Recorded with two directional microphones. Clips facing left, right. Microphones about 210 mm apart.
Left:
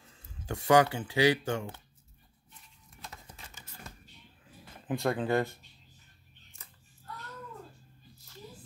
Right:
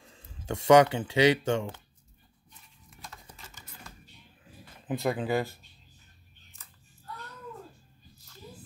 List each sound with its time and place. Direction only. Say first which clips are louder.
0.5 s speech: right 4 dB; 25° right (ahead or behind)
4.8 s speech: right 1 dB; 5° right (ahead or behind)